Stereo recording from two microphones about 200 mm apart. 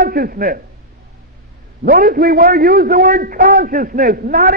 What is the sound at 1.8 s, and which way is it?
A man's voice, 50° right (ahead or behind).